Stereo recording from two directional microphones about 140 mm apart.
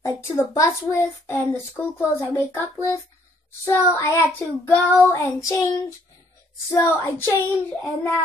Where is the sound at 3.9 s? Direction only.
20° left (ahead or behind).